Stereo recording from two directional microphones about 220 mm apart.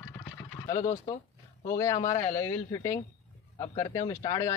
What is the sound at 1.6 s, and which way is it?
Speech, 15° left (ahead or behind).